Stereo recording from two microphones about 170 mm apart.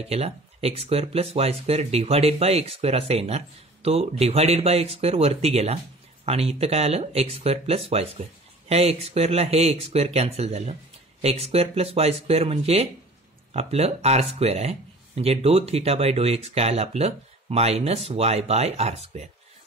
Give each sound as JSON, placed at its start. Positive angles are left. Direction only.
{"t": 0.0, "sound": "speech", "side_deg": -35}